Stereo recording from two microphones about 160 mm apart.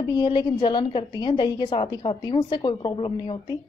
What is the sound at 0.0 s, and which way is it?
A woman's voice, 30° left (ahead or behind).